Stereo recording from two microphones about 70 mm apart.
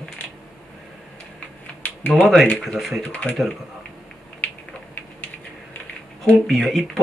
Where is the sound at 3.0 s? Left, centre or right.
Centre.